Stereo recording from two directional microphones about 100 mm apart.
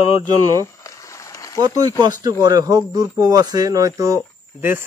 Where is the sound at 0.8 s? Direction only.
30° left (ahead or behind).